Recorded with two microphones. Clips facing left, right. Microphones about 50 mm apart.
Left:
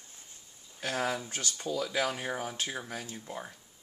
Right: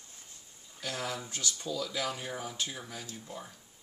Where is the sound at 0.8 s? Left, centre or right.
Left.